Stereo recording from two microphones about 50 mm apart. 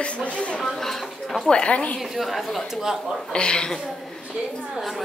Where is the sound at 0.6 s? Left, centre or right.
Centre.